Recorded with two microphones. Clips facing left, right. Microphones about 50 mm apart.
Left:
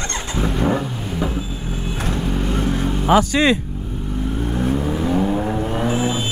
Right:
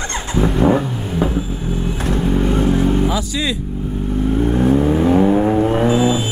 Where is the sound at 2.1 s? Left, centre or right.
Right.